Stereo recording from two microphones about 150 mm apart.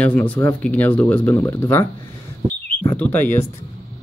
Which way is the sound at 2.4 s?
35° right (ahead or behind).